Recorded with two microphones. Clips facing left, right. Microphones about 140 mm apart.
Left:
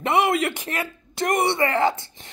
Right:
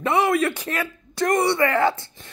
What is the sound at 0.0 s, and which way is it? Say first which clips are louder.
Speech: right 1 dB; 20° left (ahead or behind).